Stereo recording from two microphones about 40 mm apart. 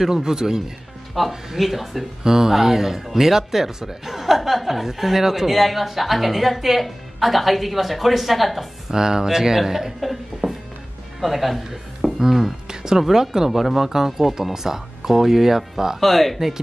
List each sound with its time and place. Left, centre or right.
0.0 s speech: centre
8.9 s speech: centre
12.6 s music: centre
13.0 s speech: centre
16.0 s speech: centre